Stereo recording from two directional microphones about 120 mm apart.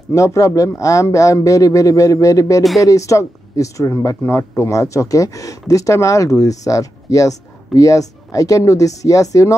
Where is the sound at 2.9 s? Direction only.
25° left (ahead or behind).